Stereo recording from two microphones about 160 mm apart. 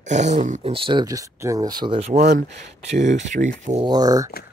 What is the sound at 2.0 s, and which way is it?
Speech, 45° right (ahead or behind).